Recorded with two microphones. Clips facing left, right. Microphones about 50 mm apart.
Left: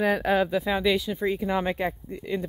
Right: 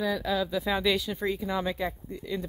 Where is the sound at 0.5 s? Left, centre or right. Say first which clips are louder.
Left 3 dB; left.